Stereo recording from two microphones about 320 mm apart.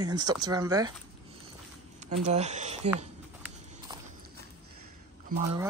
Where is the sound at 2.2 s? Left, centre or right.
Right.